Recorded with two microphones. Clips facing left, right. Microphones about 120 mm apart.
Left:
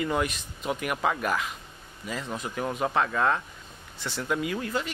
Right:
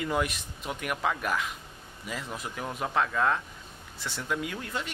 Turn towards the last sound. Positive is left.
turn(degrees=0)  # may be behind; listen again after turning